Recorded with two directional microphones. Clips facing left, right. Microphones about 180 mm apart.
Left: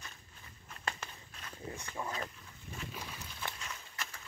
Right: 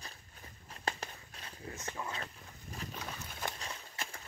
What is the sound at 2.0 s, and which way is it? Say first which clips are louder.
Speech: left 2 dB; 20° left (ahead or behind).